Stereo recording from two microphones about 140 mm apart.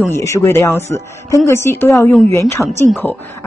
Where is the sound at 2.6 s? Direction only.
5° right (ahead or behind).